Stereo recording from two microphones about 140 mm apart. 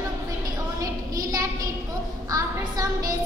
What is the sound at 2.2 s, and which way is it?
Speech, 25° right (ahead or behind).